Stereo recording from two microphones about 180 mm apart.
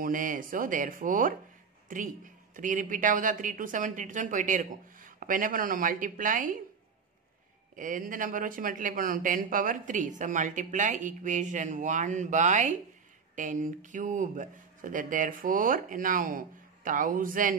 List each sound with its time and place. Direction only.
0.0 s speech: 50° right (ahead or behind)
7.7 s speech: 50° right (ahead or behind)